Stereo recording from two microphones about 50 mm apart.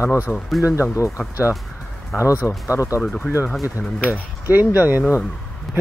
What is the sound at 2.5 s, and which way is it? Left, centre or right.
Speech, left.